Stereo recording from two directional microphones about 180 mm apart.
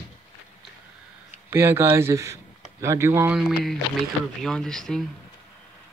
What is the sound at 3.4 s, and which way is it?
Speech, centre (ahead or behind).